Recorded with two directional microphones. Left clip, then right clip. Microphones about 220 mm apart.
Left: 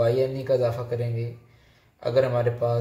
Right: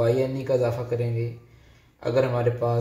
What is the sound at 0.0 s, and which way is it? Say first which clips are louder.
A man's voice: even; centre (ahead or behind).